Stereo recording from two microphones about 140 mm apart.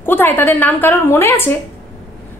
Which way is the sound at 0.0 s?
15° left (ahead or behind).